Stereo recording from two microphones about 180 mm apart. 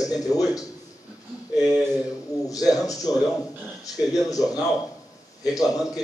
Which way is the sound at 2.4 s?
20° left (ahead or behind).